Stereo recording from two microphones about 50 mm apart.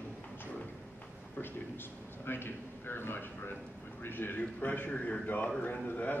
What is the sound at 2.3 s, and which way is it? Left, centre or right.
A man's voice, left.